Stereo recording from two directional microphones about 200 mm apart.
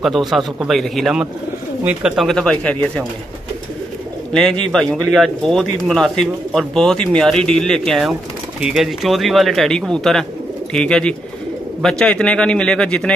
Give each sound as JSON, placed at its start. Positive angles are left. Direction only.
{"t": 0.0, "sound": "speech", "side_deg": 0}
{"t": 4.3, "sound": "speech", "side_deg": 5}